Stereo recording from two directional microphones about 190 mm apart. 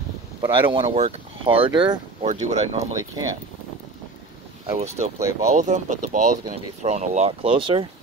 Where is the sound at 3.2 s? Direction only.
20° right (ahead or behind).